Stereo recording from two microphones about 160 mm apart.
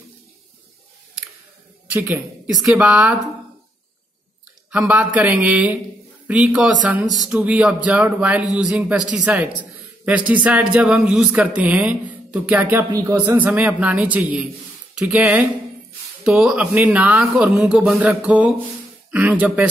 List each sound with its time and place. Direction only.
1.9 s a man's voice: 10° right (ahead or behind)
4.6 s a man's voice: 5° right (ahead or behind)